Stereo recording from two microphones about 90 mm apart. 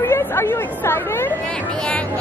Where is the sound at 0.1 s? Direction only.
25° left (ahead or behind).